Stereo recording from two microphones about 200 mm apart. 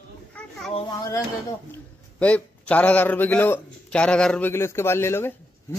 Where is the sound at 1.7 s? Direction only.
5° left (ahead or behind).